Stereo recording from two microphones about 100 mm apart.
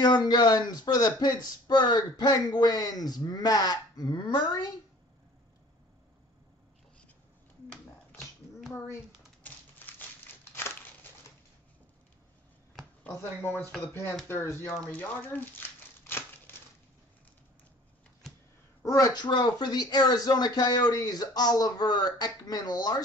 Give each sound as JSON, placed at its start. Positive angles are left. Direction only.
{"t": 0.0, "sound": "speech", "side_deg": 45}
{"t": 8.7, "sound": "speech", "side_deg": 25}
{"t": 9.4, "sound": "typewriter", "side_deg": 20}
{"t": 13.1, "sound": "speech", "side_deg": 20}
{"t": 14.9, "sound": "crumpling", "side_deg": 20}
{"t": 18.8, "sound": "speech", "side_deg": 35}